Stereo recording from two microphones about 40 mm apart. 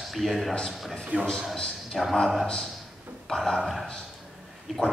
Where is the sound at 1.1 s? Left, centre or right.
Right.